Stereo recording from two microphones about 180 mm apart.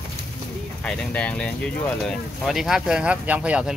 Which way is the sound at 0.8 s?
5° left (ahead or behind).